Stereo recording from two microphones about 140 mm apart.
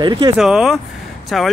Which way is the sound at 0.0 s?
35° right (ahead or behind).